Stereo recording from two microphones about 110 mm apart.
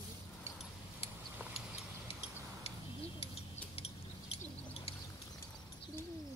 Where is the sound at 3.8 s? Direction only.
65° left (ahead or behind).